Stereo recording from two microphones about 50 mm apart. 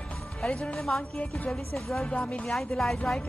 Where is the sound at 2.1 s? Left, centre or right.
Left.